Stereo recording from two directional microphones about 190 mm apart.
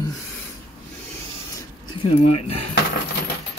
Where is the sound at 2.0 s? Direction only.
30° left (ahead or behind).